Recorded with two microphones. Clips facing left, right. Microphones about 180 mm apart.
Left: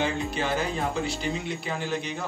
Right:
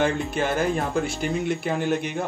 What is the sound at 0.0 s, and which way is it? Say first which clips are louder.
Speech: right 4 dB; 50° right (ahead or behind).